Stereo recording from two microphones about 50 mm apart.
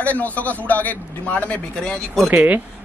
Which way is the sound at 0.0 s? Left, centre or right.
Left.